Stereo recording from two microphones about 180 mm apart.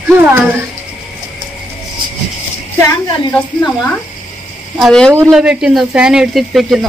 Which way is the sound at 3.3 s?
10° left (ahead or behind).